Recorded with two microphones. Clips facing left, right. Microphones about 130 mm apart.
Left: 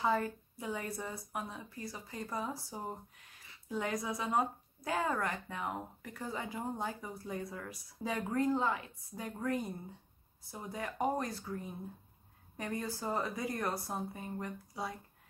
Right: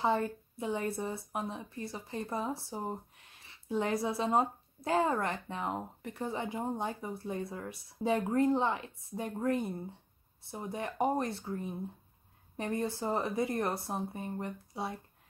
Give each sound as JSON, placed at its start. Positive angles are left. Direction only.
{"t": 0.0, "sound": "speech", "side_deg": -25}